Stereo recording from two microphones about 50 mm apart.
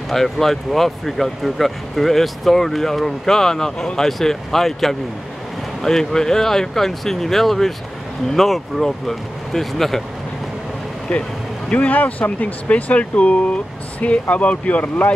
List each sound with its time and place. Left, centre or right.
0.1 s speech: centre
11.7 s speech: left